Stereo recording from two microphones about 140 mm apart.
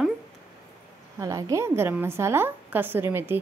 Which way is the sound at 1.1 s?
25° right (ahead or behind).